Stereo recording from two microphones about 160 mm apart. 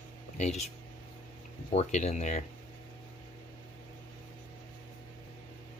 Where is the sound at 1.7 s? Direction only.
45° left (ahead or behind).